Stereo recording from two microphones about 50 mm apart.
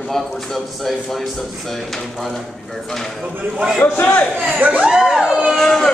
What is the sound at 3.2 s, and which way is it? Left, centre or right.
Speech, centre.